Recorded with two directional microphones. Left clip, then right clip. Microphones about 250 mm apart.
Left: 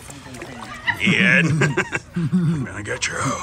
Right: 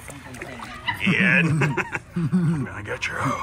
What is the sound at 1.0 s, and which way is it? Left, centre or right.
Speech, centre.